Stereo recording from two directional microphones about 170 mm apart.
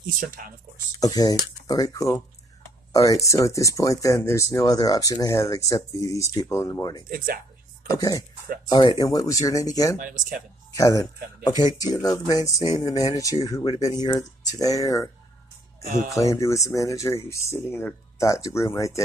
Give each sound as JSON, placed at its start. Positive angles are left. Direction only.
{"t": 0.0, "sound": "speech", "side_deg": -55}
{"t": 1.1, "sound": "speech", "side_deg": 25}
{"t": 9.9, "sound": "speech", "side_deg": -50}
{"t": 10.7, "sound": "speech", "side_deg": 20}
{"t": 16.1, "sound": "speech", "side_deg": 20}